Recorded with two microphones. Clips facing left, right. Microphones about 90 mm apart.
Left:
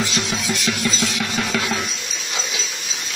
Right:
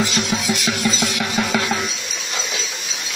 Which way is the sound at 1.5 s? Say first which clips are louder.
Right 2 dB; 15° right (ahead or behind).